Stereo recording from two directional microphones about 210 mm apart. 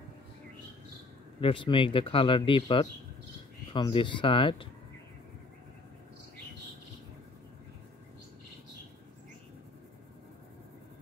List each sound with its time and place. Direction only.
1.4 s speech: 25° left (ahead or behind)